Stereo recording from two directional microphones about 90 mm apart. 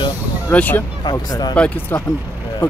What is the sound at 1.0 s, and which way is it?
Speech, 50° left (ahead or behind).